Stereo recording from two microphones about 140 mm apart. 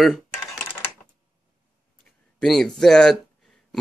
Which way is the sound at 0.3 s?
20° left (ahead or behind).